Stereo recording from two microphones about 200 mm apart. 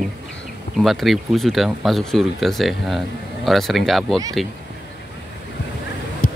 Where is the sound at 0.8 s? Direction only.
Centre (ahead or behind).